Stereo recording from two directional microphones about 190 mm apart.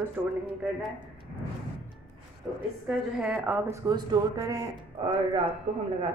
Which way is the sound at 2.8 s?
5° right (ahead or behind).